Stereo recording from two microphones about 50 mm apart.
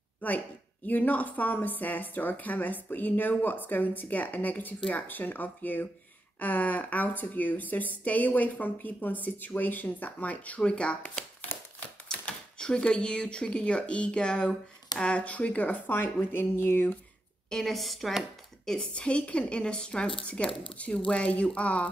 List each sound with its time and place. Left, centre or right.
0.2 s speech: left
12.1 s speech: centre; by 16.9 s left
17.5 s a woman's voice: centre
18.9 s speech: left